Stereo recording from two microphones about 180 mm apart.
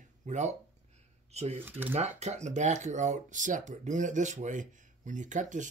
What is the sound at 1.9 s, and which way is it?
Speech, 40° right (ahead or behind).